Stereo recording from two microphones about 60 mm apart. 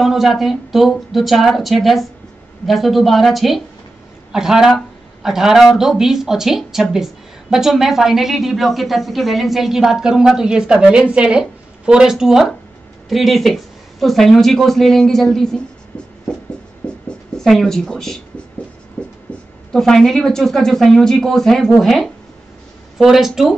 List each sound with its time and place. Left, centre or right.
0.0 s speech: centre
16.8 s music: left
17.4 s speech: centre
19.0 s writing: left
19.7 s speech: centre